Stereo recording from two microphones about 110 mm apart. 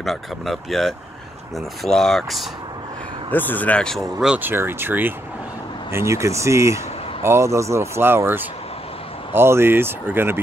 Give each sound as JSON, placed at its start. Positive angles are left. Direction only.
{"t": 0.0, "sound": "speech", "side_deg": 0}
{"t": 3.3, "sound": "speech", "side_deg": 15}
{"t": 4.4, "sound": "speech", "side_deg": -20}